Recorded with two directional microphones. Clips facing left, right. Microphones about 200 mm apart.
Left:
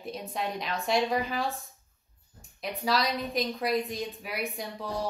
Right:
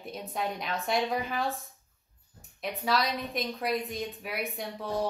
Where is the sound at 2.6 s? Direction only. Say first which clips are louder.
Even; centre (ahead or behind).